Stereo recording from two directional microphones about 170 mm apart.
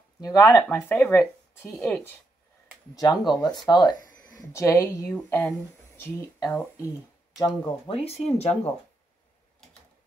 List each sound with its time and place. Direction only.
0.2 s speech: 20° left (ahead or behind)
3.0 s speech: 25° left (ahead or behind)
4.1 s speech: 15° left (ahead or behind); by 8.5 s 35° left (ahead or behind)